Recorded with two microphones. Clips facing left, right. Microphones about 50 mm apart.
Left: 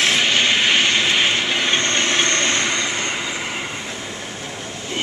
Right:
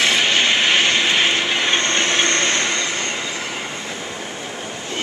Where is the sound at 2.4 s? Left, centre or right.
Centre.